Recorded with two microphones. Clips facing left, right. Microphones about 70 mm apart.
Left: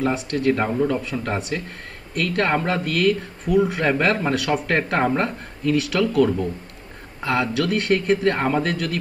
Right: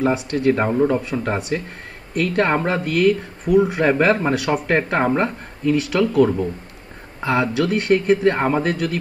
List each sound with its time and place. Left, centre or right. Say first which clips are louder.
0.1 s speech: right 3 dB; centre
0.5 s a man's voice: right 3 dB; centre
3.8 s a man's voice: right 4 dB; centre
6.2 s a man's voice: right 2 dB; centre